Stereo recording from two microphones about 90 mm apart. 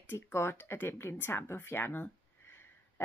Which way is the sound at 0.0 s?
25° left (ahead or behind).